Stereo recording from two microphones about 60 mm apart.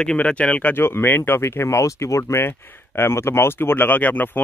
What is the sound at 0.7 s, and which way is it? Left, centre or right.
Speech, left.